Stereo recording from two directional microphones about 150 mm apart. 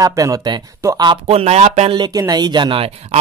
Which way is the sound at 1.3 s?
45° right (ahead or behind).